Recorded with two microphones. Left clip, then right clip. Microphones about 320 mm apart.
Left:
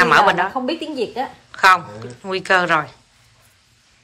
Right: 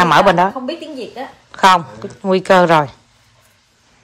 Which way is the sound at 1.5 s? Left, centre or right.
Centre.